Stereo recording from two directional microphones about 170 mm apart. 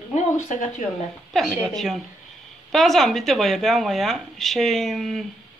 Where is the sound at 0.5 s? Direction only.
45° left (ahead or behind).